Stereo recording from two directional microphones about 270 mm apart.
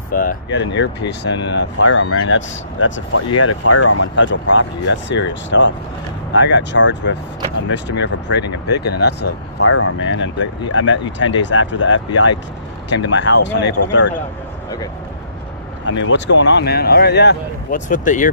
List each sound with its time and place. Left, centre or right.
0.1 s speech: left
4.1 s speech: left
9.6 s speech: left
15.8 s speech: left